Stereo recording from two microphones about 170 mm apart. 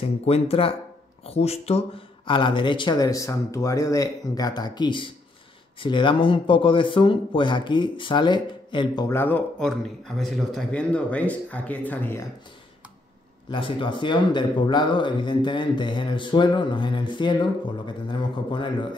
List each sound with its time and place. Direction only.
0.0 s speech: 35° left (ahead or behind)
9.1 s speech: 10° left (ahead or behind)
13.5 s speech: 30° left (ahead or behind)